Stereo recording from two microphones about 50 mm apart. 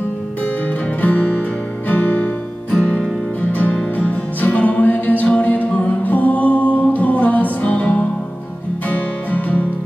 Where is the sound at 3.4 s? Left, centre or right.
Left.